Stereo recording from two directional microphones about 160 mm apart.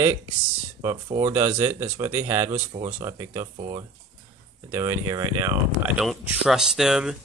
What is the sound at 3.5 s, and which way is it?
Speech, 35° right (ahead or behind).